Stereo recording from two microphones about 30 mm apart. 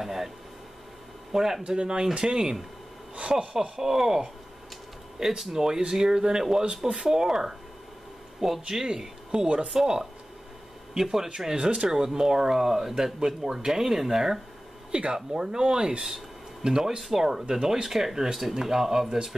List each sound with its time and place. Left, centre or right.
0.0 s a sound: centre
1.3 s speech: centre
1.7 s speech: right
3.7 s speech: centre
11.0 s speech: centre
11.5 s speech: right
11.9 s speech: right
14.9 s speech: right
15.1 s speech: centre